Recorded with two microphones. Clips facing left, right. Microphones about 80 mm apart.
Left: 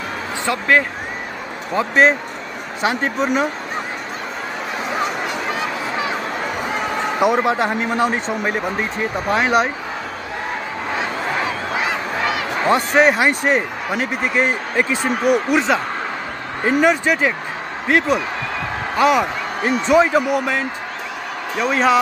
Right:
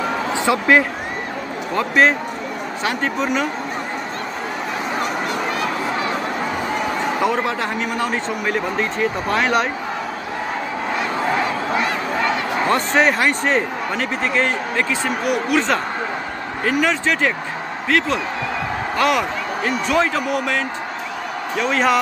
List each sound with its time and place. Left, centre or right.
0.3 s speech: centre
1.8 s speech: centre
3.0 s speech: left
7.2 s speech: centre
12.6 s speech: centre
16.6 s speech: centre
18.9 s a man's voice: centre
19.6 s a man's voice: centre